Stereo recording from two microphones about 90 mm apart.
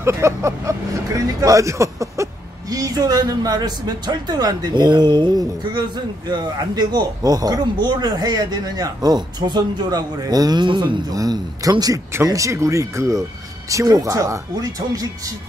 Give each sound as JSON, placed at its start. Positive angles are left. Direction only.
{"t": 0.0, "sound": "speech", "side_deg": -30}
{"t": 11.1, "sound": "speech", "side_deg": -45}